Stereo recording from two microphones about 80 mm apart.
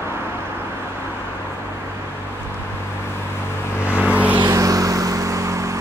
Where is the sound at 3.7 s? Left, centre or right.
Left.